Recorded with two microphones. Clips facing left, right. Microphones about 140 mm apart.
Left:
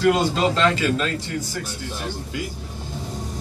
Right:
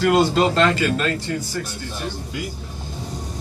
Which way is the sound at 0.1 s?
Centre (ahead or behind).